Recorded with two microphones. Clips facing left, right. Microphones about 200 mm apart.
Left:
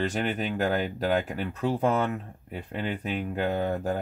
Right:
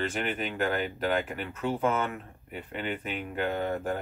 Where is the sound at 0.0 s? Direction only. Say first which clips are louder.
Left 3 dB; 40° left (ahead or behind).